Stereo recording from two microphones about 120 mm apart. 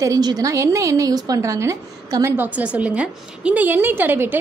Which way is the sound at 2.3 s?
10° right (ahead or behind).